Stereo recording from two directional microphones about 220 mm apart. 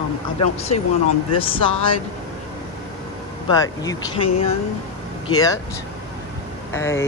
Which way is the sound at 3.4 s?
15° left (ahead or behind).